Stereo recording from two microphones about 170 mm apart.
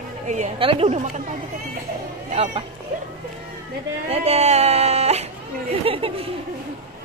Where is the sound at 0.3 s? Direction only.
35° right (ahead or behind).